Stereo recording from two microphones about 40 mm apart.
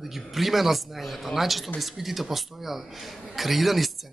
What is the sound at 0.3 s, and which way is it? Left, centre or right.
A man's voice, centre.